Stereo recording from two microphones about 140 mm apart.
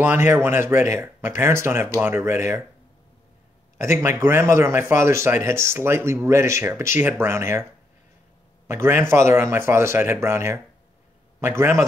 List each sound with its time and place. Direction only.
0.0 s speech: 15° right (ahead or behind)
4.0 s speech: 15° right (ahead or behind)
8.6 s speech: 20° right (ahead or behind)